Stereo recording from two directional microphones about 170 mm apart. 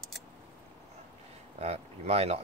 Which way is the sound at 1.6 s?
40° right (ahead or behind).